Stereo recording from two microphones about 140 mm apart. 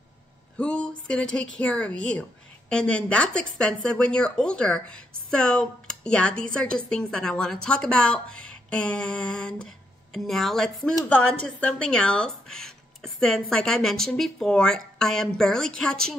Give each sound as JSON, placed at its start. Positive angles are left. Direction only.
{"t": 0.6, "sound": "a woman's voice", "side_deg": 5}